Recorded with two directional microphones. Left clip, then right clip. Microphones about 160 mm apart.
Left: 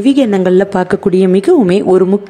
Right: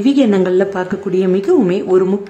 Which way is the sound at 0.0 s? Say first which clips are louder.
Left 2 dB; 40° left (ahead or behind).